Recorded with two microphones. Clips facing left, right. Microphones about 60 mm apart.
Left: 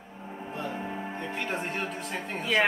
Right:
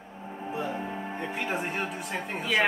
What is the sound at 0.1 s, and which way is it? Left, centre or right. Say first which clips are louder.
Speech: right 3 dB; centre.